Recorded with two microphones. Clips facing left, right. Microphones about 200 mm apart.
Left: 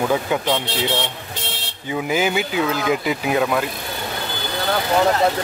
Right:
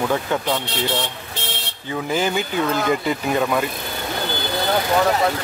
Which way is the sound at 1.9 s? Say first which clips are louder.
Left 1 dB; 10° left (ahead or behind).